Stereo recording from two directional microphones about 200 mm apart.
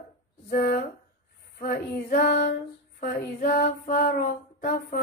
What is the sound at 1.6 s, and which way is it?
Female singing, 45° left (ahead or behind).